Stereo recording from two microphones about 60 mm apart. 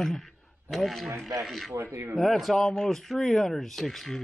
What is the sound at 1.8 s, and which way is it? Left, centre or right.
Speech, right.